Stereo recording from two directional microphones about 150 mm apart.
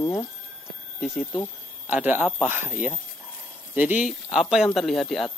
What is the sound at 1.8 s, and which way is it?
Speech, 10° right (ahead or behind).